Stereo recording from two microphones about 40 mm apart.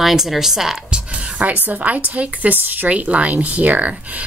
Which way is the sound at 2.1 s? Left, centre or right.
Right.